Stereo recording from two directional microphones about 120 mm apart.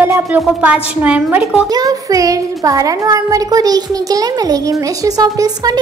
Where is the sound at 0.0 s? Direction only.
20° right (ahead or behind).